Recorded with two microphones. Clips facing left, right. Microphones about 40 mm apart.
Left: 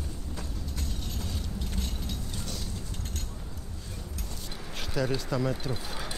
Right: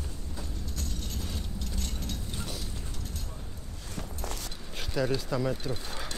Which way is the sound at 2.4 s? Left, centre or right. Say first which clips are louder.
Even; centre.